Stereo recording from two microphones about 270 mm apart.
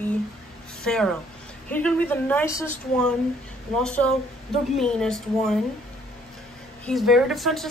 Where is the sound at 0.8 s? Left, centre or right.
Centre.